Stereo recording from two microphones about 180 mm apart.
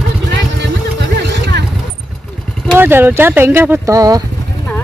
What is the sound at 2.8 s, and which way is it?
Speech, 10° right (ahead or behind).